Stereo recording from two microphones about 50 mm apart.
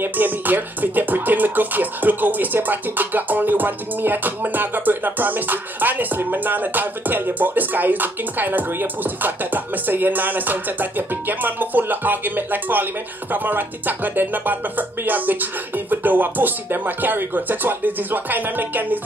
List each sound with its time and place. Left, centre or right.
0.0 s music: right